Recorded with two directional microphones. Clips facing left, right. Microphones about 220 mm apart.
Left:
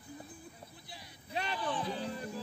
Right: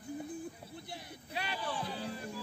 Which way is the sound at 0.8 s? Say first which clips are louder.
Right 6 dB; 55° right (ahead or behind).